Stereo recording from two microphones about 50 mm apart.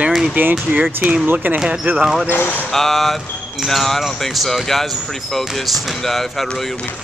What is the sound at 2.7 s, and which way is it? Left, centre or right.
Speech, centre.